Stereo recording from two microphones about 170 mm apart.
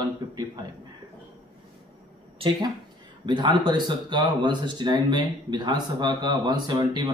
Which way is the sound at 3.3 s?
25° right (ahead or behind).